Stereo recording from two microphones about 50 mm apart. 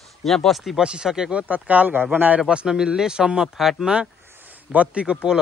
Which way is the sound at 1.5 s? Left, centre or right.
Right.